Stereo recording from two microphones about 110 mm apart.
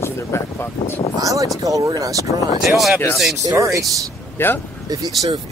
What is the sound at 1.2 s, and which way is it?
Speech, 30° right (ahead or behind).